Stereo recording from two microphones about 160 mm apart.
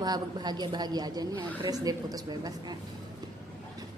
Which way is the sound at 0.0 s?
25° right (ahead or behind).